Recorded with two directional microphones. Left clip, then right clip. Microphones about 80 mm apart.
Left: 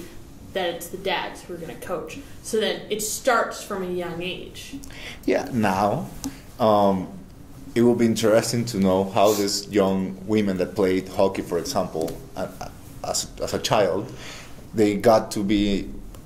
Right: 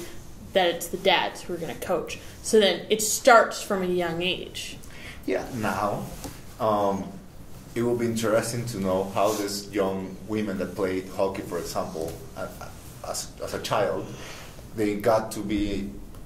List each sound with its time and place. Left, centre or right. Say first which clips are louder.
0.5 s speech: right 4 dB; right
5.0 s speech: left 5 dB; left
8.0 s speech: left 5 dB; left